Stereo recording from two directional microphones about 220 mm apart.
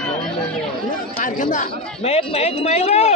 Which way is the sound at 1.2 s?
35° left (ahead or behind).